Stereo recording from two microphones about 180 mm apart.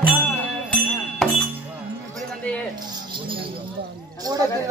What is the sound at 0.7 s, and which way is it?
Music, 5° left (ahead or behind).